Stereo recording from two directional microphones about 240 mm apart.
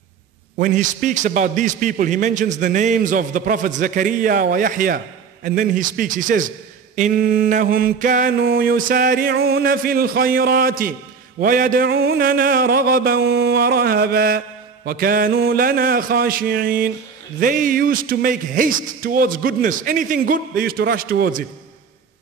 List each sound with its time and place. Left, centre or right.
0.6 s mantra: right